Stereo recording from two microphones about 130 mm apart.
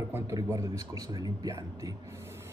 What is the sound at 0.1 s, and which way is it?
Speech, 20° right (ahead or behind).